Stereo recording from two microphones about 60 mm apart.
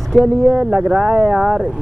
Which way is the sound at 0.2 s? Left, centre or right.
Right.